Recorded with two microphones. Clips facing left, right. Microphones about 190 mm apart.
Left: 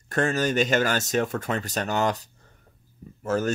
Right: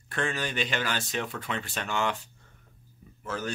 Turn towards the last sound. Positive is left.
turn(degrees=45)  # may be behind; listen again after turning